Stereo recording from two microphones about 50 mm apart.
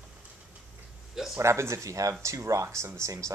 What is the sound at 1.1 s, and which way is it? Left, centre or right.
Speech, centre.